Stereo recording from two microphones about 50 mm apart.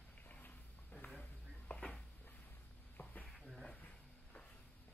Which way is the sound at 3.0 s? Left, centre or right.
Left.